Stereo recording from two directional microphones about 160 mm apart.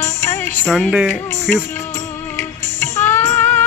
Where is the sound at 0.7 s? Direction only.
Centre (ahead or behind).